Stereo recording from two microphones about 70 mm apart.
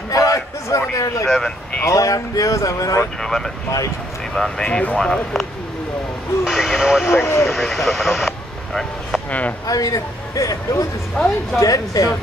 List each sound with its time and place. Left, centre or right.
0.1 s a sound: left
0.9 s speech: left
3.2 s speech: centre
6.4 s speech: centre
7.1 s speech: left
7.5 s speech: centre
9.7 s a man's voice: left
11.2 s speech: centre
11.6 s a man's voice: left